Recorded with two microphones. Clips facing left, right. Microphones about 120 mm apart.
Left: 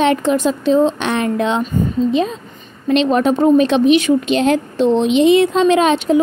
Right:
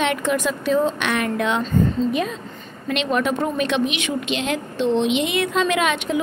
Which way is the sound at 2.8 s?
30° left (ahead or behind).